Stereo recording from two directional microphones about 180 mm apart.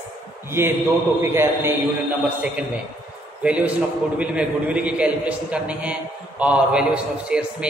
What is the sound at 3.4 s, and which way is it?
A man's voice, 5° right (ahead or behind).